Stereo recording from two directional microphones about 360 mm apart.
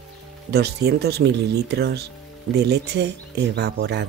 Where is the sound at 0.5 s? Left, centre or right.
Right.